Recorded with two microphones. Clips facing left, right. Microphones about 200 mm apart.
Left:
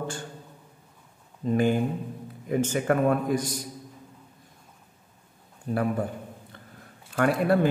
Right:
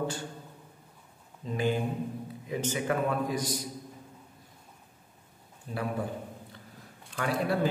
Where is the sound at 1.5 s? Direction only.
50° left (ahead or behind).